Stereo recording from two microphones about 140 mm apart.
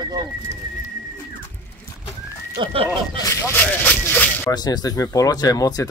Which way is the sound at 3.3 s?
15° left (ahead or behind).